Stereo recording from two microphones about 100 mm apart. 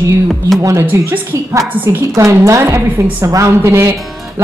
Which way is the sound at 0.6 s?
30° right (ahead or behind).